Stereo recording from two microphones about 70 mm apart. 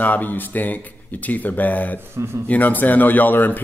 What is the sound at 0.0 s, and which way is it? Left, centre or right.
A man's voice, left.